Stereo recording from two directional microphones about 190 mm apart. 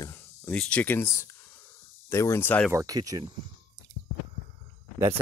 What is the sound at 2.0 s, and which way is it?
Speech, 15° left (ahead or behind).